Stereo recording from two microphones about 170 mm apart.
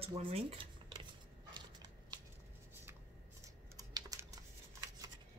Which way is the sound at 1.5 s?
25° right (ahead or behind).